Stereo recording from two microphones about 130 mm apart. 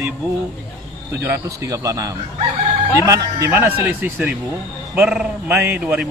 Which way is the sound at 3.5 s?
15° right (ahead or behind).